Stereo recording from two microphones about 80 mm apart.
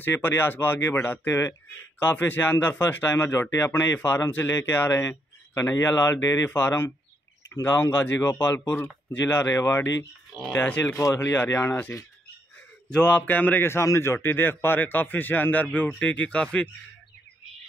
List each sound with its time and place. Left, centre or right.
0.0 s a man's voice: left
8.2 s a man's voice: left
10.5 s speech: centre
11.0 s a man's voice: left
12.9 s a man's voice: centre
13.7 s a man's voice: left; by 16.6 s centre